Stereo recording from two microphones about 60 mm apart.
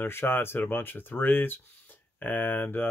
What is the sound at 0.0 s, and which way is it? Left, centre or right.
Speech, left.